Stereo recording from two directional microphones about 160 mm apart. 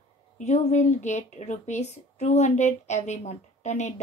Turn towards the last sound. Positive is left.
turn(degrees=45)  # may be behind; listen again after turning